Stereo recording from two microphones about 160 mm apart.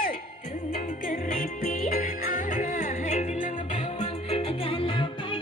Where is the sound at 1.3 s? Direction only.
60° left (ahead or behind).